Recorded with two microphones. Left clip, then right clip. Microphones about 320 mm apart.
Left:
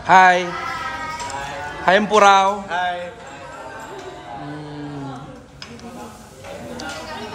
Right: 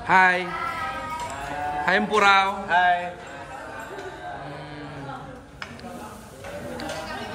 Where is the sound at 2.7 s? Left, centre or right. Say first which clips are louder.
Right 3 dB; right.